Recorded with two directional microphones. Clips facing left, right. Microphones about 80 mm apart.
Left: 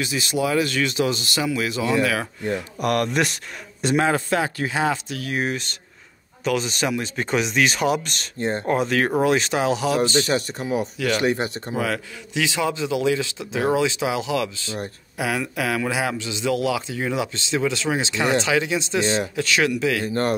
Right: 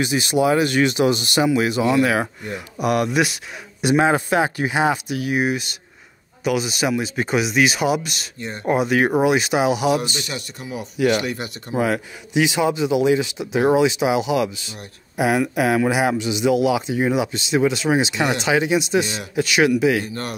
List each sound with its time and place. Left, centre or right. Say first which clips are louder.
0.0 s speech: right 5 dB; right
2.5 s a man's voice: right 2 dB; centre
8.4 s speech: left 8 dB; left
8.6 s a man's voice: right 5 dB; centre
10.1 s speech: left 8 dB; left
11.7 s a man's voice: right 8 dB; centre
20.1 s speech: left 7 dB; left